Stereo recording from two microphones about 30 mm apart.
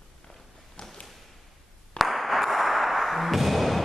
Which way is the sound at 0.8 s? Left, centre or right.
Left.